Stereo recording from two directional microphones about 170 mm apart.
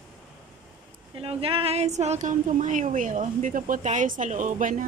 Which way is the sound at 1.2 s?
35° right (ahead or behind).